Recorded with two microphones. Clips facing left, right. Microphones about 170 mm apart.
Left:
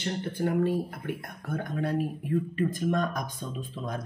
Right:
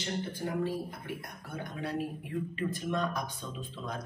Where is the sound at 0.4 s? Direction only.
55° left (ahead or behind).